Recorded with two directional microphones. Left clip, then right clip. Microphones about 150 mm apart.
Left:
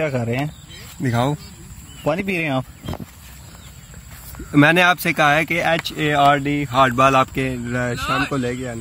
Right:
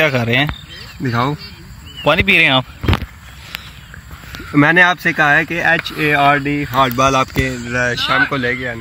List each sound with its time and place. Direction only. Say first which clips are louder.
0.0 s speech: right 8 dB; 5° right (ahead or behind)
1.1 s speech: right 3 dB; 35° left (ahead or behind)
2.0 s speech: right 10 dB; centre (ahead or behind)
4.5 s speech: right 3 dB; 40° left (ahead or behind)
7.0 s speech: right 1 dB; 45° left (ahead or behind)
7.7 s speech: right 7 dB; 90° left
8.3 s speech: right 6 dB; 75° left (ahead or behind)